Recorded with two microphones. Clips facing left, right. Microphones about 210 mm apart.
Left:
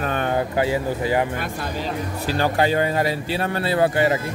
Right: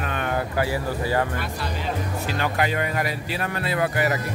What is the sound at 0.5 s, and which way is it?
Speech, 20° left (ahead or behind).